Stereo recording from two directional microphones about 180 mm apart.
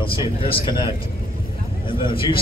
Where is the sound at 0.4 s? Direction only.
30° left (ahead or behind).